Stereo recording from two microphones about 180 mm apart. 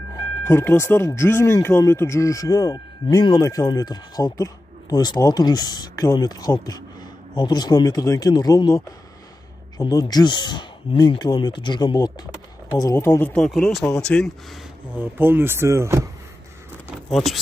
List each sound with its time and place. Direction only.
0.5 s speech: 15° left (ahead or behind)
15.0 s speech: 10° right (ahead or behind)
17.1 s speech: centre (ahead or behind)